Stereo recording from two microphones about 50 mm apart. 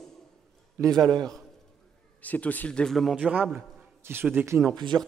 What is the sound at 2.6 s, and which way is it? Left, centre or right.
Speech, centre.